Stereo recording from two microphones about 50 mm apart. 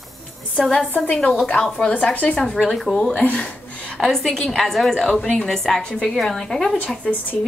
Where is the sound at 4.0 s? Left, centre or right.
Centre.